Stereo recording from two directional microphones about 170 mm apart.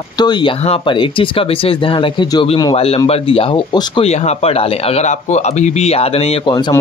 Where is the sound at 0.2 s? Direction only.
25° left (ahead or behind).